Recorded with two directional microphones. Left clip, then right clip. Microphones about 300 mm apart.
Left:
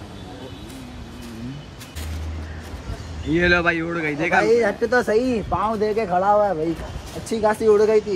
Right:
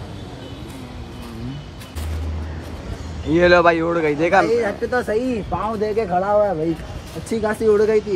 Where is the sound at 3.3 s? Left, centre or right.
Centre.